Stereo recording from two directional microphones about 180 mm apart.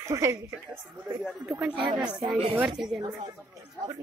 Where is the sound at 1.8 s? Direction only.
25° right (ahead or behind).